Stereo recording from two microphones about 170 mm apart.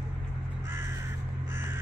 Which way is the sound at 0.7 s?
15° right (ahead or behind).